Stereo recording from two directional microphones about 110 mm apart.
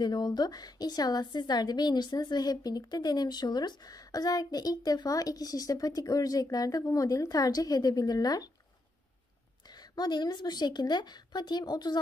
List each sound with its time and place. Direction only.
0.0 s a woman's voice: 40° left (ahead or behind)
9.7 s a woman's voice: 40° left (ahead or behind)